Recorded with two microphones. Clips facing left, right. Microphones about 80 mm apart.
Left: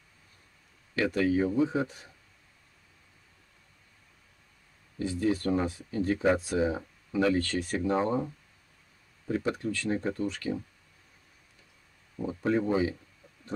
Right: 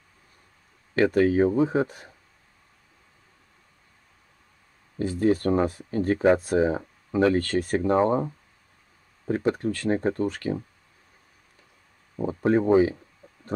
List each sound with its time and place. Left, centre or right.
0.9 s speech: right
4.9 s speech: right
12.2 s speech: right
13.2 s a sound: right